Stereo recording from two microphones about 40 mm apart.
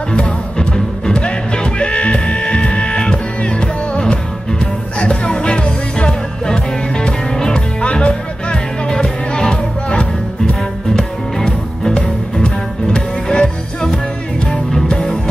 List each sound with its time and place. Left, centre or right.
0.1 s music: left